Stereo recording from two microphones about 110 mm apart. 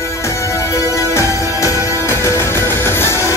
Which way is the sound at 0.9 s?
30° left (ahead or behind).